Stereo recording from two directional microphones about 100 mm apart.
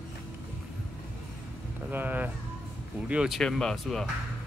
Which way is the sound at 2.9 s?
10° right (ahead or behind).